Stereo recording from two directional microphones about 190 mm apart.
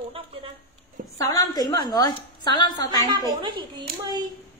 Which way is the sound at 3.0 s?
20° right (ahead or behind).